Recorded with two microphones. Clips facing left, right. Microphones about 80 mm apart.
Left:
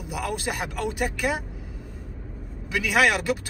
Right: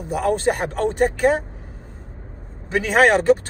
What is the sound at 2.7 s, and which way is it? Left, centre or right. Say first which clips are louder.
Speech: right 6 dB; right.